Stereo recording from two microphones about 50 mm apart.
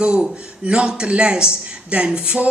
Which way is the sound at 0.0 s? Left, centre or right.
Centre.